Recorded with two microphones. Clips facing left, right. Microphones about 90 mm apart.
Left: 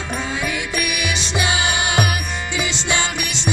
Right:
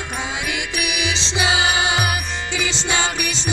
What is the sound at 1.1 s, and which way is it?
Music, 25° right (ahead or behind).